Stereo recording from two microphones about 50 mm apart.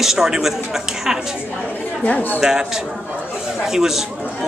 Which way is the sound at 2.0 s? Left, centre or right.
Left.